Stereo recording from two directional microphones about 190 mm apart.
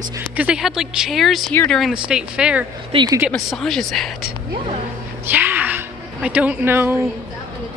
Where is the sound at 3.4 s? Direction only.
Centre (ahead or behind).